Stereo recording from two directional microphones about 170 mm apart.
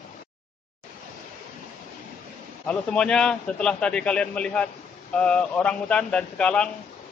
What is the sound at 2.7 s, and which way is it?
A man's voice, 5° left (ahead or behind).